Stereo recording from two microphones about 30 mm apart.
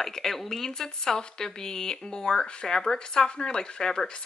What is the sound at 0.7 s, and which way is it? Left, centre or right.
Speech, centre.